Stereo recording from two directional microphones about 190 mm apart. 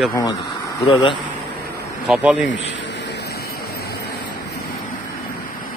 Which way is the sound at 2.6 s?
65° left (ahead or behind).